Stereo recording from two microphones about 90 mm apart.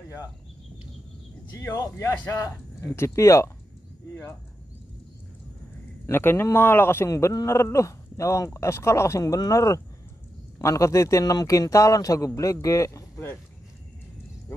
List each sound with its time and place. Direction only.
1.8 s a man's voice: 35° left (ahead or behind)
6.0 s a man's voice: 25° left (ahead or behind)